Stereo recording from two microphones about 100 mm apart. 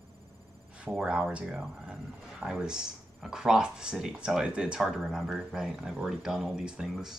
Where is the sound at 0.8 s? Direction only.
10° right (ahead or behind).